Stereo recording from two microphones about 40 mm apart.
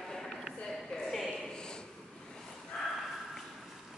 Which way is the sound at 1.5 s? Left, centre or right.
Left.